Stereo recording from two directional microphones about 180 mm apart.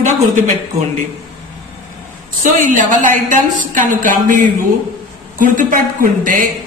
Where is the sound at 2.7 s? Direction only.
45° right (ahead or behind).